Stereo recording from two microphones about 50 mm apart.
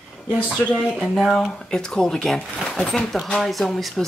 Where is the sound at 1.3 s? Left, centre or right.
Centre.